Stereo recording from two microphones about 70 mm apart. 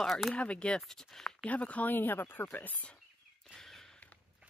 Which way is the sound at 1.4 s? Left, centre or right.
Left.